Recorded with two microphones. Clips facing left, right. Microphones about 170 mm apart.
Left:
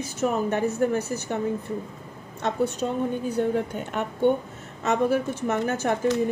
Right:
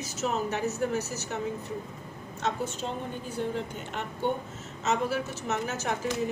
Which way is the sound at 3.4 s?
50° left (ahead or behind).